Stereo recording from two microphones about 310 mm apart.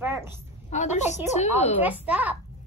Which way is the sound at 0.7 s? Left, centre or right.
Left.